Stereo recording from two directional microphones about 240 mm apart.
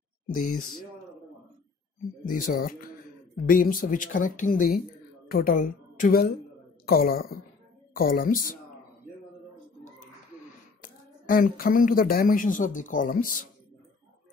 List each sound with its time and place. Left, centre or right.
0.3 s speech: left
2.2 s speech: left
10.8 s a woman's voice: left